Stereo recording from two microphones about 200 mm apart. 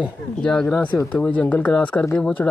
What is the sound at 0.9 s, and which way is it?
Speech, 15° left (ahead or behind).